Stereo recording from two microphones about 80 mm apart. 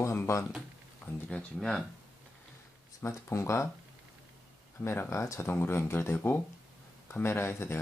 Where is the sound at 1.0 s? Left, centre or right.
Centre.